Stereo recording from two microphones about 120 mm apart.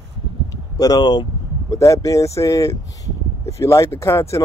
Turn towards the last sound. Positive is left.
turn(degrees=25)  # may be behind; listen again after turning